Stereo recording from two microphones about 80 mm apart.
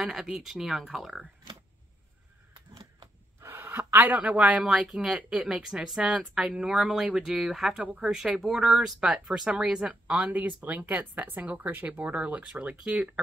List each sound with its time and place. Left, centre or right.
0.0 s speech: centre
2.5 s a sound: right
3.3 s speech: right
12.8 s speech: centre